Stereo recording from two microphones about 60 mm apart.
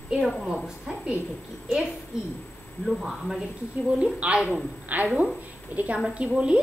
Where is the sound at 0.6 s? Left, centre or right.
Centre.